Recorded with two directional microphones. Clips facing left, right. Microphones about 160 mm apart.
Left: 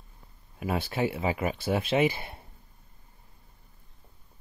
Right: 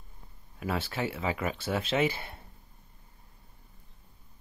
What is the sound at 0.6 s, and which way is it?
Speech, 15° left (ahead or behind).